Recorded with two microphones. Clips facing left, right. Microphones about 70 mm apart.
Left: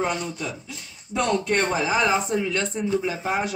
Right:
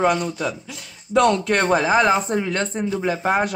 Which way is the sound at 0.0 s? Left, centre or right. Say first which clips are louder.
Right 7 dB; right.